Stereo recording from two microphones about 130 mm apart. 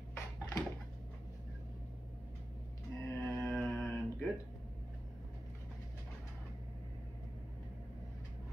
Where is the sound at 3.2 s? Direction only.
20° left (ahead or behind).